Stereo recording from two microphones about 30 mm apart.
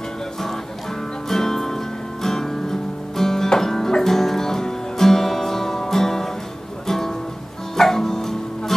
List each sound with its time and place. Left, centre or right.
1.3 s music: centre